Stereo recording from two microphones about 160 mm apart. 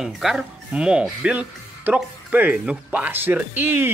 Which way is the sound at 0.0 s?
5° right (ahead or behind).